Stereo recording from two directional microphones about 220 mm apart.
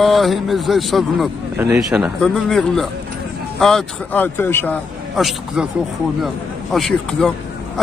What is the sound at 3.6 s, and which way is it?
Speech, centre (ahead or behind).